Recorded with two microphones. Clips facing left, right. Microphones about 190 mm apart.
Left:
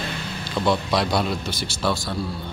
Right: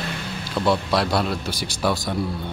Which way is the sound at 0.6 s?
5° right (ahead or behind).